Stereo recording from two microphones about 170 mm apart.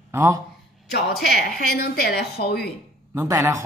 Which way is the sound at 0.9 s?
70° left (ahead or behind).